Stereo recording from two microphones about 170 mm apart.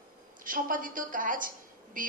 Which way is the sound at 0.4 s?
55° right (ahead or behind).